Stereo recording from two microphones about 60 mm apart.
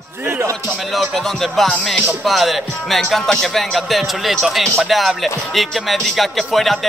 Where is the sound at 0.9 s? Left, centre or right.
Centre.